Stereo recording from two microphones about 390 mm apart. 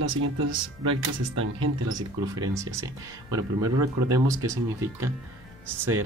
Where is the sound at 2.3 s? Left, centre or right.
Centre.